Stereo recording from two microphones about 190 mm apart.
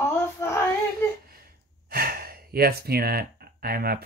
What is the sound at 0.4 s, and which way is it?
Female singing, 15° left (ahead or behind).